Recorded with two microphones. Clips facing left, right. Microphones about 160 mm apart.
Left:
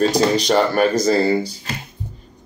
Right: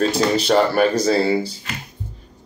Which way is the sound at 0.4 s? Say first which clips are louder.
Even; 5° right (ahead or behind).